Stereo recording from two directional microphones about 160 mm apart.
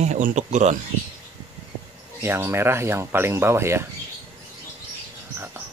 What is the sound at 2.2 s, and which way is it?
Speech, 15° right (ahead or behind).